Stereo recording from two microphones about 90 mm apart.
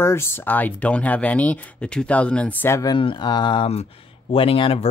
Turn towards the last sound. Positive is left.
turn(degrees=90)